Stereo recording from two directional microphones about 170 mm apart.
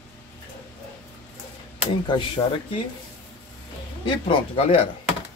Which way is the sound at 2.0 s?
30° left (ahead or behind).